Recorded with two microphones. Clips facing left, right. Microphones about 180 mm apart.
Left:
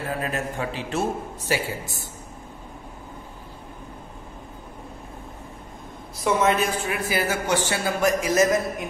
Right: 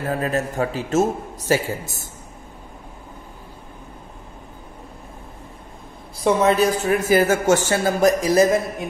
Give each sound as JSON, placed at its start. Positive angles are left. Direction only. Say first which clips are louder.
{"t": 0.1, "sound": "speech", "louder": "right 6 dB", "side_deg": -40}
{"t": 6.2, "sound": "speech", "louder": "right 5 dB", "side_deg": -35}